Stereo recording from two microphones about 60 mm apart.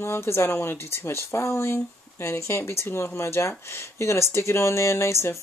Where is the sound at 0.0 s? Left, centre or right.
Left.